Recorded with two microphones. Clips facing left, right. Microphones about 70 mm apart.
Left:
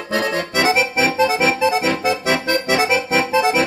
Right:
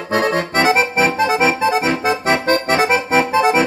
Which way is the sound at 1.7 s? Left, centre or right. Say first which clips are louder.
Right 1 dB; right.